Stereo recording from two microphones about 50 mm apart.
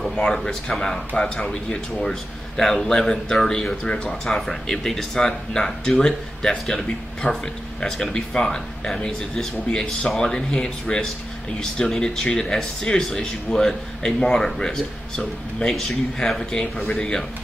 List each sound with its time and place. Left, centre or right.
0.1 s speech: centre
16.7 s speech: left
17.0 s speech: centre